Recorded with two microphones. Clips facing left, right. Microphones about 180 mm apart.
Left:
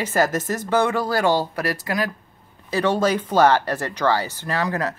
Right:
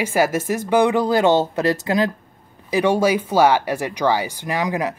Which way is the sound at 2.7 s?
15° right (ahead or behind).